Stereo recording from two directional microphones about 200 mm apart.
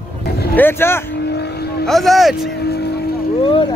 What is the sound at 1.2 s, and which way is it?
Vehicle, 55° left (ahead or behind).